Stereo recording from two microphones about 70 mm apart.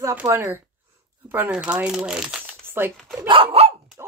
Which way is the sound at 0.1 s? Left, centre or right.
Right.